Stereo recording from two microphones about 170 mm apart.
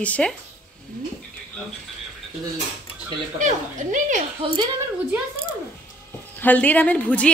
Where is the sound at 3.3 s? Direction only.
45° right (ahead or behind).